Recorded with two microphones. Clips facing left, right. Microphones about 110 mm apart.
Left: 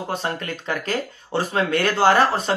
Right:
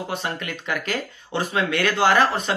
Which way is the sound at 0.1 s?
40° left (ahead or behind).